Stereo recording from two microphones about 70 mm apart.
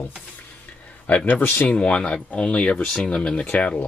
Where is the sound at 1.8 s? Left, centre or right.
Centre.